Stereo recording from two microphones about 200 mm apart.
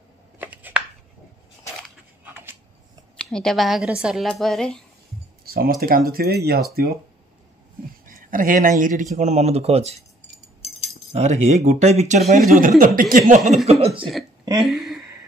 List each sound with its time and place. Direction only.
0.4 s a sound: 10° right (ahead or behind)
2.2 s a sound: 10° right (ahead or behind)
3.2 s a woman's voice: 5° left (ahead or behind)
5.4 s speech: 50° right (ahead or behind)
8.0 s speech: 45° right (ahead or behind)
11.1 s speech: 35° right (ahead or behind)
12.5 s speech: 45° right (ahead or behind)
13.7 s speech: 30° right (ahead or behind)
14.6 s speech: centre (ahead or behind)